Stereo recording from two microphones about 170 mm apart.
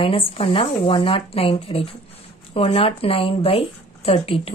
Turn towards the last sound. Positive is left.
turn(degrees=35)  # may be behind; listen again after turning